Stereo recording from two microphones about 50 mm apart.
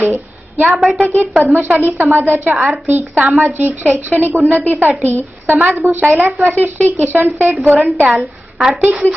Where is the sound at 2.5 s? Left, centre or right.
Right.